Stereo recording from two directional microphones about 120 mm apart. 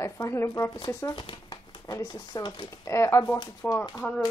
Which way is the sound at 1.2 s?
35° left (ahead or behind).